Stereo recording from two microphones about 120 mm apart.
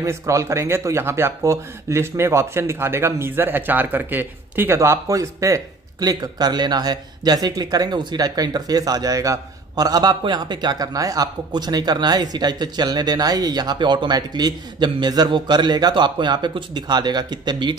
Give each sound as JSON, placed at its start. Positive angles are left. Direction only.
{"t": 0.0, "sound": "speech", "side_deg": -25}